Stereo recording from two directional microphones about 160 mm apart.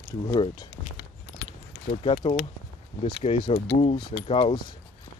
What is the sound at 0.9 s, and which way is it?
Keys jangling, 90° left.